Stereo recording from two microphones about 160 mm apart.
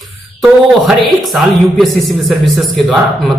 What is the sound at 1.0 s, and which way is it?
Speech, centre (ahead or behind).